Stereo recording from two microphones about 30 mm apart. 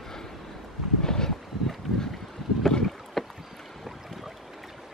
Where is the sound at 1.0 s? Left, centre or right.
Centre.